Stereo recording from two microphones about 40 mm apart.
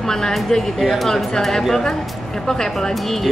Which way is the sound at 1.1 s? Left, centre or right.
Centre.